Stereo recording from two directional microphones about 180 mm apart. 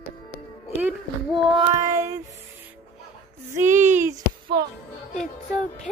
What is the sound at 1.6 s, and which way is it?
Child singing, 20° right (ahead or behind).